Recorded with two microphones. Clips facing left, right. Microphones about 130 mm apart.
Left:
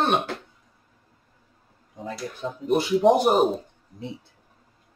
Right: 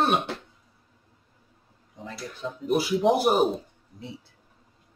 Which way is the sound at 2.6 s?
5° right (ahead or behind).